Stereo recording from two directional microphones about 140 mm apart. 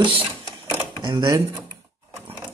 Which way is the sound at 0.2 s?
15° right (ahead or behind).